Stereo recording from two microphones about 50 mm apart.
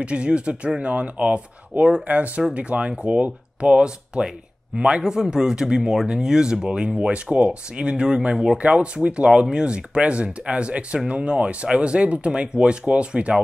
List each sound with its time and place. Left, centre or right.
0.0 s speech: right